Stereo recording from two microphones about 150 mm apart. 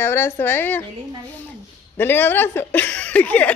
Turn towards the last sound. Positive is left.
turn(degrees=10)  # may be behind; listen again after turning